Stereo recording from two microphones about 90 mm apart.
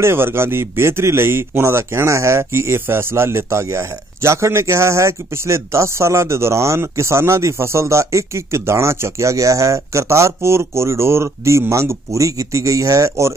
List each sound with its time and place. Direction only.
0.0 s speech: 25° right (ahead or behind)